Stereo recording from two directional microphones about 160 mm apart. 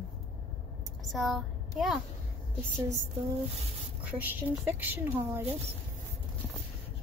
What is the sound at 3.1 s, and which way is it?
Speech, 40° right (ahead or behind).